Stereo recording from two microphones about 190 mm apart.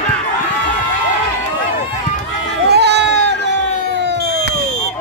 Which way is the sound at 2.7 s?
60° right (ahead or behind).